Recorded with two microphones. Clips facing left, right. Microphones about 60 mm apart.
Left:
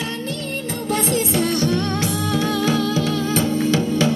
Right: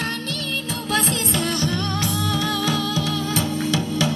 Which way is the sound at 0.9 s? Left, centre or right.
Right.